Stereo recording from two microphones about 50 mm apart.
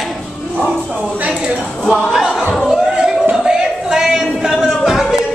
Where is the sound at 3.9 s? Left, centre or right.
Centre.